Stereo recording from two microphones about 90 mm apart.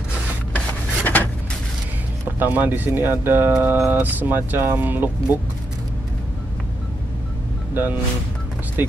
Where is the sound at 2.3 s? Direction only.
20° right (ahead or behind).